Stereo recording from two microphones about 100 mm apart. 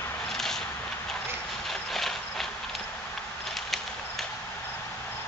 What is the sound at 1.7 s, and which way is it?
Clip-clop, centre (ahead or behind).